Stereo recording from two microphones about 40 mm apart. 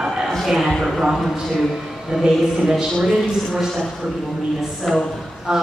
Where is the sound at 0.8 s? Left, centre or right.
Centre.